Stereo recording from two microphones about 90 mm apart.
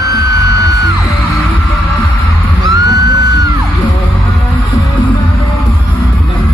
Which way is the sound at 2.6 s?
40° right (ahead or behind).